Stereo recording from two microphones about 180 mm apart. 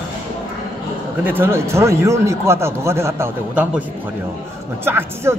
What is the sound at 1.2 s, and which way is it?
A man's voice, 10° right (ahead or behind).